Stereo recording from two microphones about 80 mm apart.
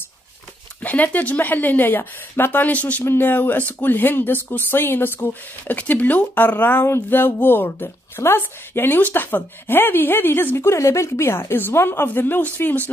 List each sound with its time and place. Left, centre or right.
0.8 s a woman's voice: centre